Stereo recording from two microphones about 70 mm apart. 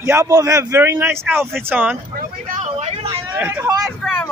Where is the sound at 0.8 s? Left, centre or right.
Right.